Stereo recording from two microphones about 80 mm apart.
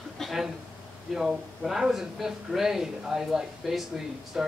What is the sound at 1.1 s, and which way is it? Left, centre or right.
Speech, centre.